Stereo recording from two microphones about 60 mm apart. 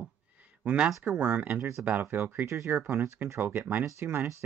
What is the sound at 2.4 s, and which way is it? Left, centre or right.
Speech, right.